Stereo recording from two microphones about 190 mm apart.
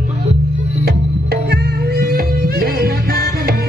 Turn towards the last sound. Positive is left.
turn(degrees=-55)  # may be behind; listen again after turning